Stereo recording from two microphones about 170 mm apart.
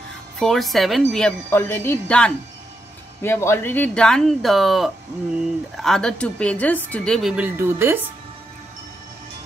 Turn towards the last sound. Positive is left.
turn(degrees=-15)  # may be behind; listen again after turning